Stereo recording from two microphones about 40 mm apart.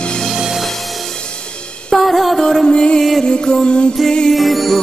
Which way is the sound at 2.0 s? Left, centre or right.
Centre.